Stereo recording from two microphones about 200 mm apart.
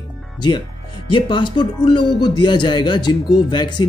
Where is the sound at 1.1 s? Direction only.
25° left (ahead or behind).